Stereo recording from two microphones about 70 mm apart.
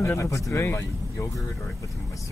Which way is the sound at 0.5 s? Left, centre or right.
Left.